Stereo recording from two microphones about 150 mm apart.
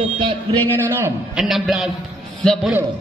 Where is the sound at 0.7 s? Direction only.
15° right (ahead or behind).